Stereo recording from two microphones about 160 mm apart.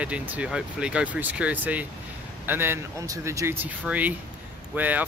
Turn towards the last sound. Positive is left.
turn(degrees=-10)  # may be behind; listen again after turning